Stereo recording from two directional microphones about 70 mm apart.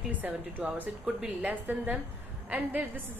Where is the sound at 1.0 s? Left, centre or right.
Centre.